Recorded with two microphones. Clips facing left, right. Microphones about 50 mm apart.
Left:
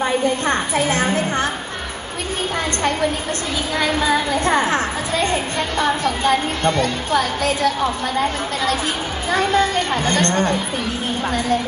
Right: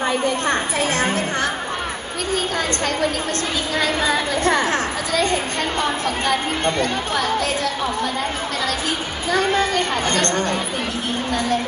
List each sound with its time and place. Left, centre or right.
0.0 s a woman's voice: left
4.4 s a woman's voice: left
7.1 s speech: left
9.6 s speech: right
10.2 s a woman's voice: left